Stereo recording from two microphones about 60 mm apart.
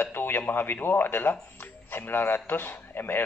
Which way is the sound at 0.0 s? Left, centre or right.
Left.